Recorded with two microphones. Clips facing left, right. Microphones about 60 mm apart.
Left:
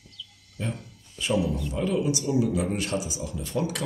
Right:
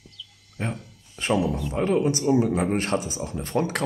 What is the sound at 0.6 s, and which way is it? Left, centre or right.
Speech, right.